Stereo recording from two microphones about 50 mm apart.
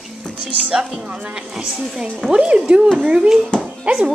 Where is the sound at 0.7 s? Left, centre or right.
Centre.